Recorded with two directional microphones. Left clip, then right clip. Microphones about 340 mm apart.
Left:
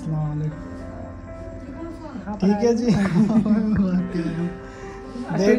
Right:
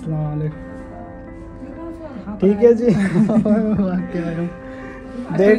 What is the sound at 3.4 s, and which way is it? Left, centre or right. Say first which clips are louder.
Speech: right 5 dB; centre.